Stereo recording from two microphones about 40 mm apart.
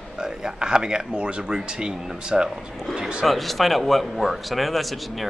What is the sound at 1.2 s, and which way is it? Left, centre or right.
Speech, right.